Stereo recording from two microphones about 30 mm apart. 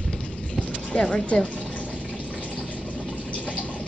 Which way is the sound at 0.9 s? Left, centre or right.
Left.